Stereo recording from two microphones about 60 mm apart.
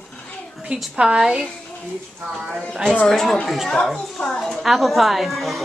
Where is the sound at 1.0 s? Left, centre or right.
Centre.